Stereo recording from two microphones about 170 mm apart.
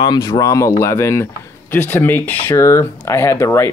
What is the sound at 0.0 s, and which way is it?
Speech, 20° left (ahead or behind).